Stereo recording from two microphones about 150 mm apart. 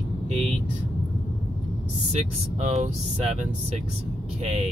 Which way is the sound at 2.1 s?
50° right (ahead or behind).